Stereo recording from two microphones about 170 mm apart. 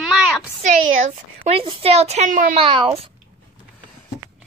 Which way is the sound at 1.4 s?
30° right (ahead or behind).